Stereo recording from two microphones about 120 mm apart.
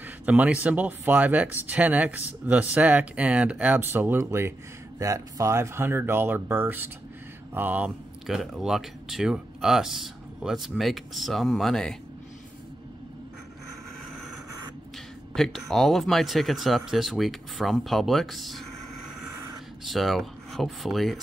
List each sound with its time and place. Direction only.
0.0 s speech: 15° right (ahead or behind)
8.3 s speech: centre (ahead or behind)
15.3 s speech: 5° left (ahead or behind)
19.8 s speech: centre (ahead or behind)